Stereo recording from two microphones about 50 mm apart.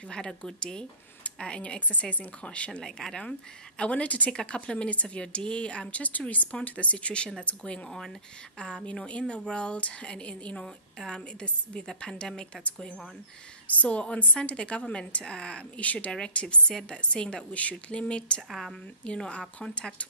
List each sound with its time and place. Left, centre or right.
0.1 s a woman's voice: centre
2.8 s a woman's voice: centre; by 4.3 s left
4.3 s a woman's voice: centre
13.7 s a woman's voice: left